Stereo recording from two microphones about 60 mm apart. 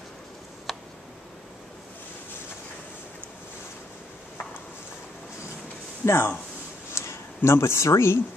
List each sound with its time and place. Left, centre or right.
0.7 s tick: centre
6.0 s speech: left
6.9 s a sound: left